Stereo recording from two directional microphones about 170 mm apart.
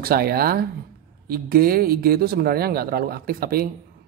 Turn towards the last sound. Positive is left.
turn(degrees=-60)  # may be behind; listen again after turning